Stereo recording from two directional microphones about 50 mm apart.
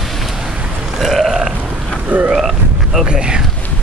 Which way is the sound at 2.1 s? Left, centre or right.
Right.